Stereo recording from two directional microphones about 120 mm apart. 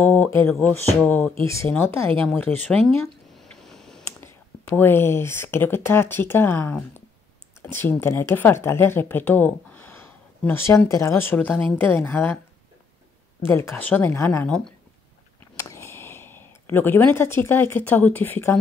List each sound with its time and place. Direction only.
0.3 s speech: 20° left (ahead or behind)
1.4 s speech: 25° left (ahead or behind)
3.3 s a sound: centre (ahead or behind)
4.2 s speech: 20° left (ahead or behind)
13.4 s speech: 20° left (ahead or behind)
15.5 s speech: 25° left (ahead or behind)